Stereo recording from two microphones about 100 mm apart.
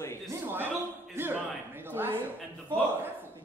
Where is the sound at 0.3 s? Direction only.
20° right (ahead or behind).